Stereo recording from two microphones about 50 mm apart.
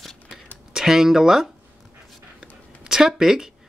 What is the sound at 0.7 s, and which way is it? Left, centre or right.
Speech, centre.